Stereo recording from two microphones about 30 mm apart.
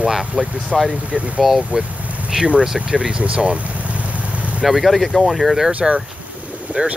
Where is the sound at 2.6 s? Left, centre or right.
Centre.